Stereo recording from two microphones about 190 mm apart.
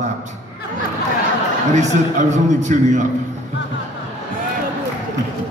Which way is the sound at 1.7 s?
40° right (ahead or behind).